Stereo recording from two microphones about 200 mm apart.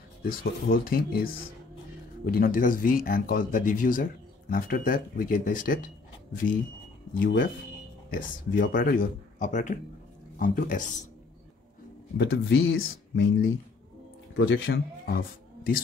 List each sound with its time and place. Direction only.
0.2 s speech: 45° left (ahead or behind)
2.3 s speech: 45° left (ahead or behind)
7.2 s speech: 45° left (ahead or behind)
12.2 s speech: 55° left (ahead or behind)
12.5 s speech: 80° left; by 15.8 s 45° left (ahead or behind)